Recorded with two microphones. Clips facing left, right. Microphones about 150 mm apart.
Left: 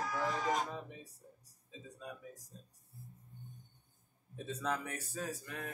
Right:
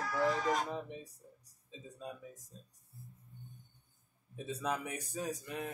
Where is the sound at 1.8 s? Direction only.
20° right (ahead or behind).